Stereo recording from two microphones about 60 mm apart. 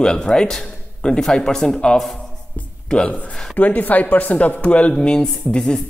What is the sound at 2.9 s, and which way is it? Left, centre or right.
Speech, centre.